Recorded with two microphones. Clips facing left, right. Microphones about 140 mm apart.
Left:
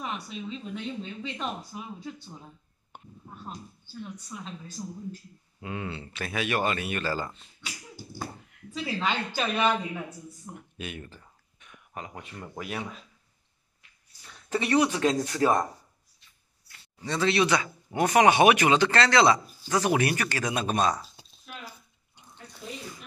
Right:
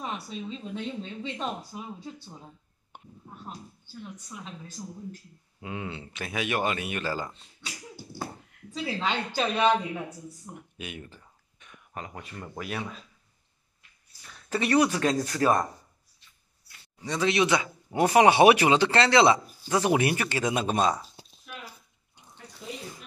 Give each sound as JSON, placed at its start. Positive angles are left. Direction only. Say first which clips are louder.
{"t": 0.0, "sound": "speech", "louder": "even", "side_deg": -30}
{"t": 4.3, "sound": "speech", "louder": "left 2 dB", "side_deg": -15}
{"t": 8.7, "sound": "speech", "louder": "even", "side_deg": -25}
{"t": 11.6, "sound": "speech", "louder": "right 1 dB", "side_deg": 10}
{"t": 14.5, "sound": "speech", "louder": "right 1 dB", "side_deg": 20}
{"t": 17.0, "sound": "speech", "louder": "even", "side_deg": -15}